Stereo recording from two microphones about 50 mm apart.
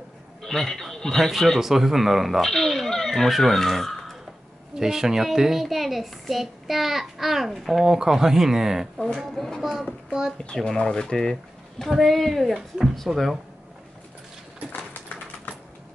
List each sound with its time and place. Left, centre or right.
0.4 s a child's voice: centre
2.4 s speech: centre
4.7 s a child's voice: centre
10.3 s a child's voice: centre